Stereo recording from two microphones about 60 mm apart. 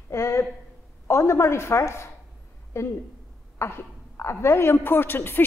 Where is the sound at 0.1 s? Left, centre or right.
Left.